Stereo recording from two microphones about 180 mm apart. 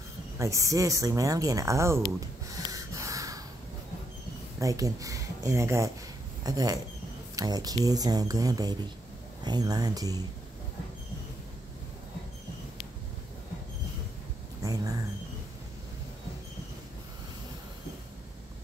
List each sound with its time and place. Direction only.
0.4 s speech: 15° right (ahead or behind)
2.1 s gasp: 20° right (ahead or behind)
4.6 s speech: 20° right (ahead or behind)
14.6 s a sound: 20° right (ahead or behind)